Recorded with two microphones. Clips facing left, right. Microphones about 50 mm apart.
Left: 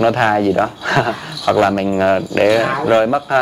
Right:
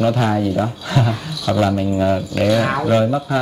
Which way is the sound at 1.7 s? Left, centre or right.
Left.